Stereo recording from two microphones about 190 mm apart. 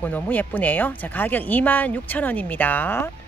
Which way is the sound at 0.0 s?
10° left (ahead or behind).